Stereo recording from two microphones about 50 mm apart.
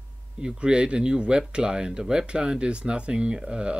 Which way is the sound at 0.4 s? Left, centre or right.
Centre.